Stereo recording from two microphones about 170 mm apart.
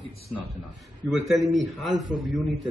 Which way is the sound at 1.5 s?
Centre (ahead or behind).